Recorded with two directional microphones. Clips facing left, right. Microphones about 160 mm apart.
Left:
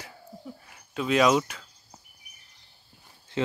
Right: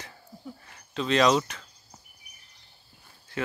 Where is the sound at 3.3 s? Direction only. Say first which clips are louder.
Left 4 dB; 20° left (ahead or behind).